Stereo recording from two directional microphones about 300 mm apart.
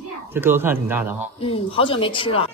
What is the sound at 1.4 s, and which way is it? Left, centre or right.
Speech, centre.